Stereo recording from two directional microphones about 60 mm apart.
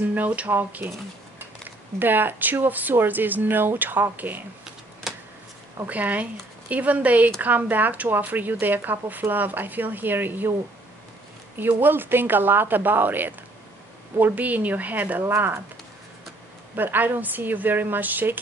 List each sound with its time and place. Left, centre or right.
0.1 s speech: right
0.6 s speech: right
2.0 s speech: right
5.1 s a sound: centre
5.9 s speech: right
11.5 s speech: right
16.7 s speech: right